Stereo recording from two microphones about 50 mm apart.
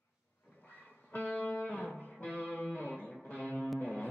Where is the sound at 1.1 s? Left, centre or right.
Left.